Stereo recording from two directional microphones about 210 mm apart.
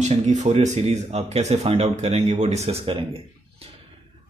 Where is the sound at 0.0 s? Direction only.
35° right (ahead or behind).